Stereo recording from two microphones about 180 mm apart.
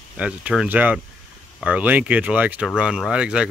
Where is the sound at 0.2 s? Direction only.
5° right (ahead or behind).